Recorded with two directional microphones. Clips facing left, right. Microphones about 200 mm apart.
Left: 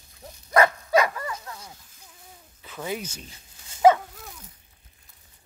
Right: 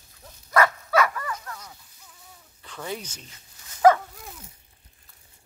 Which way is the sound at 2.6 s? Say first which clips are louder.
Left 2 dB; 10° left (ahead or behind).